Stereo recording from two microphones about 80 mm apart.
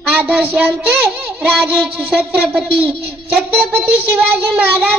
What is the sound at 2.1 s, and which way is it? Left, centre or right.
Speech, centre.